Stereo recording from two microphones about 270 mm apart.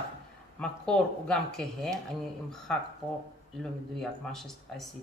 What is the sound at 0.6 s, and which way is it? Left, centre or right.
Speech, centre.